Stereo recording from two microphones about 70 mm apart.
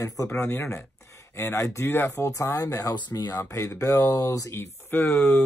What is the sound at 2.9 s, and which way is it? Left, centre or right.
Speech, left.